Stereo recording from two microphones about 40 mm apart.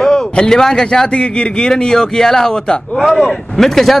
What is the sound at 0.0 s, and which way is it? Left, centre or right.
A man's voice, centre.